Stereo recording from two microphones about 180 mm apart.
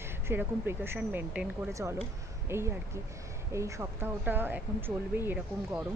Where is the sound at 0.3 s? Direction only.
10° right (ahead or behind).